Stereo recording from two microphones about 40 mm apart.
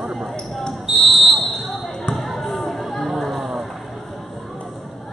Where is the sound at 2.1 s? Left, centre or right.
Centre.